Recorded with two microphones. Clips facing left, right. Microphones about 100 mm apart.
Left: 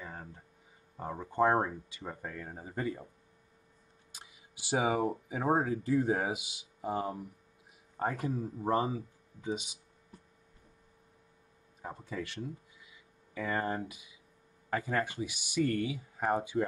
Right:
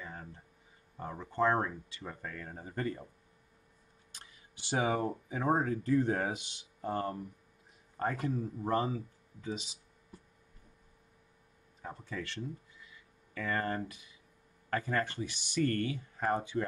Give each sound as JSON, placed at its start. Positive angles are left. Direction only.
{"t": 0.0, "sound": "a sound", "side_deg": 50}
{"t": 1.3, "sound": "speech", "side_deg": 15}
{"t": 4.1, "sound": "camera", "side_deg": 10}
{"t": 5.5, "sound": "speech", "side_deg": 10}
{"t": 8.2, "sound": "speech", "side_deg": 20}
{"t": 11.8, "sound": "speech", "side_deg": 15}